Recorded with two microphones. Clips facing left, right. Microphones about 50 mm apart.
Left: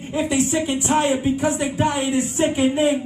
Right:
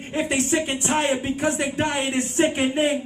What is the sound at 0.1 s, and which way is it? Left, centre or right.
Speech, right.